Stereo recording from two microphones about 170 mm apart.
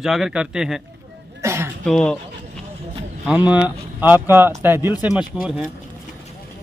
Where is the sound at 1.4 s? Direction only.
15° right (ahead or behind).